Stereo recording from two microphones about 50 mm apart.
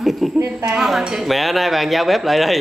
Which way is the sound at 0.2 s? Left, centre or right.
Centre.